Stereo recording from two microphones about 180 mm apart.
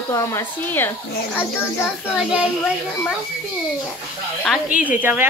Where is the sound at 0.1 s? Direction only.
15° left (ahead or behind).